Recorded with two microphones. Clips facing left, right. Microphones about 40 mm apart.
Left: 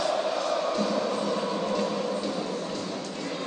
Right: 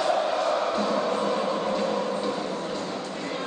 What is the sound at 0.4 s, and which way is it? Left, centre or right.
Music, right.